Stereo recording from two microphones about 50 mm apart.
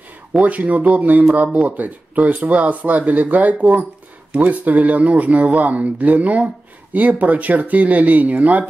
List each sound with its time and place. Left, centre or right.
0.4 s speech: right